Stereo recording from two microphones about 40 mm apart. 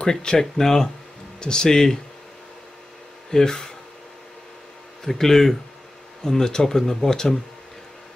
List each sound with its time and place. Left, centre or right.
0.0 s speech: centre
3.3 s speech: centre
5.0 s speech: centre